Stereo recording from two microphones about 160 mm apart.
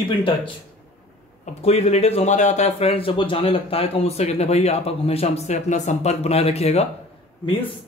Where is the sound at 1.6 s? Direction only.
40° left (ahead or behind).